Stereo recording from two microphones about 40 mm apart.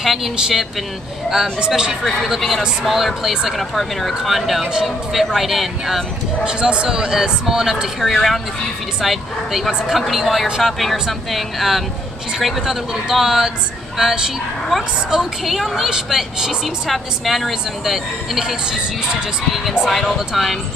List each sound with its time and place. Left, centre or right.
0.0 s speech: centre
1.7 s speech: centre
2.2 s a woman's voice: centre
6.4 s speech: right
8.1 s a woman's voice: centre
15.4 s a woman's voice: centre
19.9 s a woman's voice: centre